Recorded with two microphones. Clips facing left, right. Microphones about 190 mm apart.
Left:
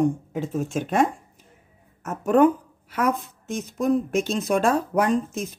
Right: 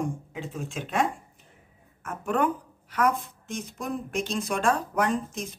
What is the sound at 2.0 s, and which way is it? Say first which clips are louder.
Speech: left 8 dB; 40° left (ahead or behind).